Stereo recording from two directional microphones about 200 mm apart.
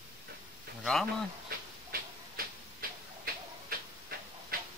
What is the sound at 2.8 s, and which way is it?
Tick-tock, 50° right (ahead or behind).